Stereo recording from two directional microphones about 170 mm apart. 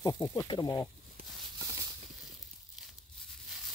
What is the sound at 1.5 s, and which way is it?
Clip-clop, 20° right (ahead or behind).